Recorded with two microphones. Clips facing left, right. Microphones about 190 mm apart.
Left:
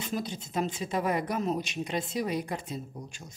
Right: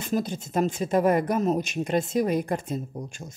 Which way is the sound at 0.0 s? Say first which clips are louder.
Right 6 dB; 50° right (ahead or behind).